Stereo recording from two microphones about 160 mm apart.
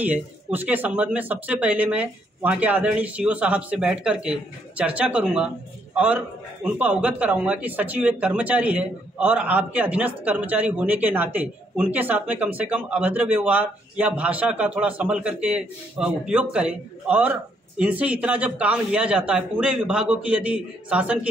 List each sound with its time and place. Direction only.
0.0 s a man's voice: 10° right (ahead or behind)